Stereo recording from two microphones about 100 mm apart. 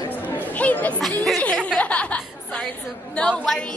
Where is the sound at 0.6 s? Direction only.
15° left (ahead or behind).